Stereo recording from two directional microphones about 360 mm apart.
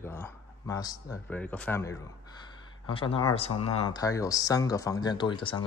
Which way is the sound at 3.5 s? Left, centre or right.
Left.